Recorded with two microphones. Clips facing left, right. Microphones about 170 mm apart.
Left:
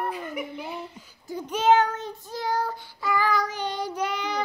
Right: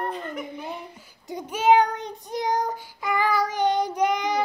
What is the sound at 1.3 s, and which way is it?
Child singing, 10° right (ahead or behind).